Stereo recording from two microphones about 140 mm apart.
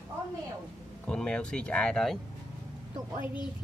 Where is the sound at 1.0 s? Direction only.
5° left (ahead or behind).